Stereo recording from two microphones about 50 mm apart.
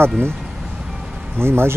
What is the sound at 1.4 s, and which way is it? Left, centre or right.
Speech, right.